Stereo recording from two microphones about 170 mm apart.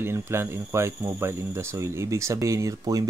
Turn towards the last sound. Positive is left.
turn(degrees=-20)  # may be behind; listen again after turning